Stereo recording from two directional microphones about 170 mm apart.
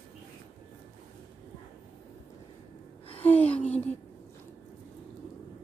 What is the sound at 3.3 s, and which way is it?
Speech, 10° left (ahead or behind).